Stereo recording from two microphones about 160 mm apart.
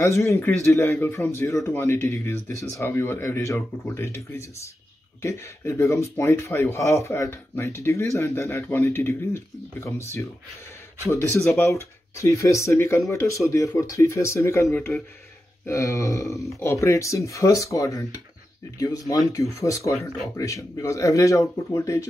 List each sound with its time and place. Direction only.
0.0 s speech: 20° left (ahead or behind)